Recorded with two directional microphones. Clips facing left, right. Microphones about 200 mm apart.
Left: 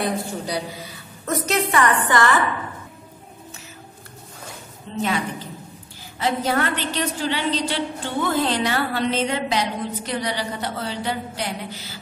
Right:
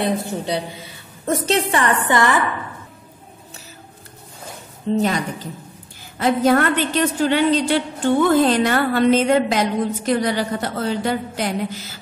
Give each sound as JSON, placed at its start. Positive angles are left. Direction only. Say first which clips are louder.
{"t": 0.0, "sound": "a woman's voice", "louder": "right 3 dB", "side_deg": -25}
{"t": 4.9, "sound": "a woman's voice", "louder": "right 5 dB", "side_deg": -40}
{"t": 6.1, "sound": "a woman's voice", "louder": "right 6 dB", "side_deg": -50}